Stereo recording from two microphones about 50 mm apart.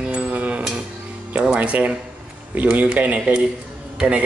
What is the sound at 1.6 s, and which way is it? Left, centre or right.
Speech, right.